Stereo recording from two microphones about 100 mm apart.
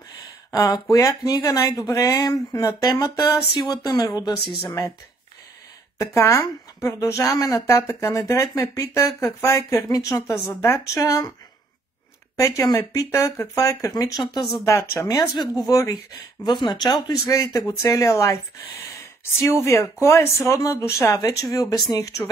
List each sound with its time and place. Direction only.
0.5 s speech: 35° left (ahead or behind)
5.9 s speech: 25° left (ahead or behind)
12.4 s speech: 30° left (ahead or behind)
14.6 s speech: 25° left (ahead or behind)
15.0 s speech: 45° left (ahead or behind)
16.4 s speech: 50° left (ahead or behind); by 18.3 s 30° left (ahead or behind)
19.6 s speech: 30° left (ahead or behind)